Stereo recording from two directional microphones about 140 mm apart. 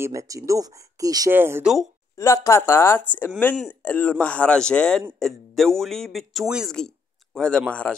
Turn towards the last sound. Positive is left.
turn(degrees=10)  # may be behind; listen again after turning